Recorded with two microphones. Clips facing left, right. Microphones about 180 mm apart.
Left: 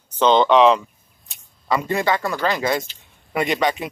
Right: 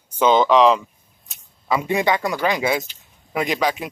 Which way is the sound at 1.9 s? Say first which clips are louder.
Right 2 dB; 15° right (ahead or behind).